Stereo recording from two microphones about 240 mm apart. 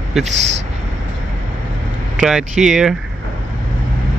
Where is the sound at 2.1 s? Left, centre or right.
Centre.